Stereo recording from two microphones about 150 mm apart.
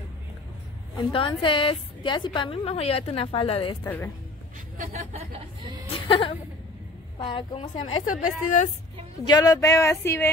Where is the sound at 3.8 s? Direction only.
15° left (ahead or behind).